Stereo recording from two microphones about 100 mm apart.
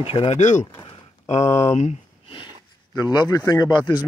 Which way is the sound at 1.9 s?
65° left (ahead or behind).